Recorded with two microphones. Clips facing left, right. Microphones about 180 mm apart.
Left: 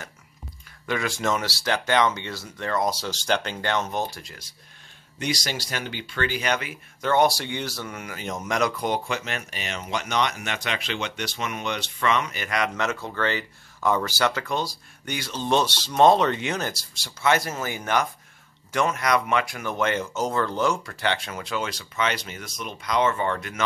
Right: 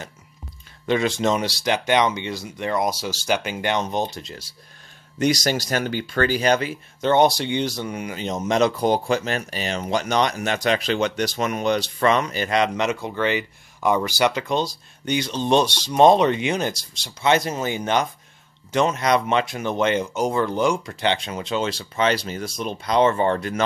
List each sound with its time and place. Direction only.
0.8 s speech: 25° right (ahead or behind)
5.2 s speech: 45° right (ahead or behind)